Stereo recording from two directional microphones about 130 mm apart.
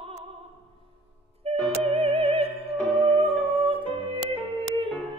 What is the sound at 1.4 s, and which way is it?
Music, 55° right (ahead or behind).